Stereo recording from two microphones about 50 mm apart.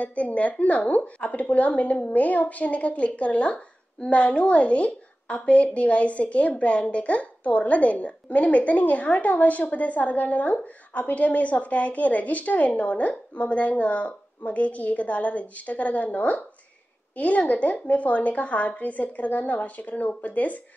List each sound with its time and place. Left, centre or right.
0.0 s a woman's voice: left